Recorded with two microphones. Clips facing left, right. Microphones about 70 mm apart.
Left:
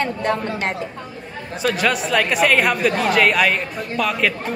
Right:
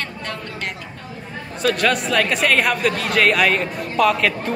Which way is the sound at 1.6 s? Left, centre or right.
Centre.